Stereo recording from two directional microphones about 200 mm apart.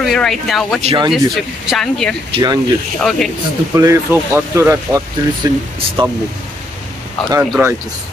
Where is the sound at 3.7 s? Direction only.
15° right (ahead or behind).